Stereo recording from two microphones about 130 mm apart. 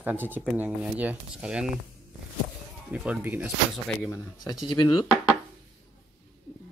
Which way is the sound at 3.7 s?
Centre (ahead or behind).